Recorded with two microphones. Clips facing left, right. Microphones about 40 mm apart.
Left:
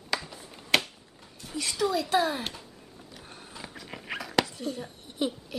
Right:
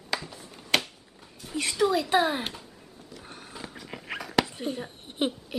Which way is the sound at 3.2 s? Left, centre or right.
Centre.